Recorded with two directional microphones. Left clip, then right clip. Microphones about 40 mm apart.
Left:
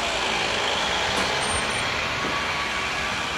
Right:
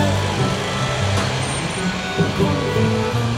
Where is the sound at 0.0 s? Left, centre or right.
Left.